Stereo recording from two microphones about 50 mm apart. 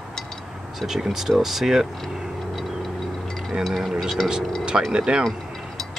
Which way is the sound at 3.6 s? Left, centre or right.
Centre.